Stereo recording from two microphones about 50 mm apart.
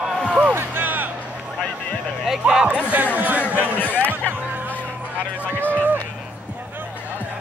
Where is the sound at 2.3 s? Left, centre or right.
Centre.